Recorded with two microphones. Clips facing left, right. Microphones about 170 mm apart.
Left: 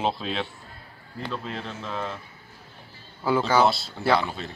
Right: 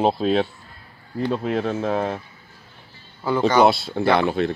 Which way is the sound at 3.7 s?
60° right (ahead or behind).